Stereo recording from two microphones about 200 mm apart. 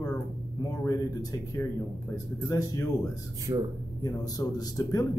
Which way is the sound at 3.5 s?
15° right (ahead or behind).